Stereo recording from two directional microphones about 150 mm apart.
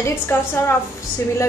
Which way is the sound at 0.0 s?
15° left (ahead or behind).